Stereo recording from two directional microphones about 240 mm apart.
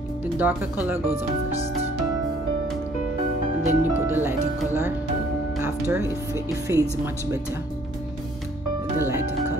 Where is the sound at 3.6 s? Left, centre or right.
Centre.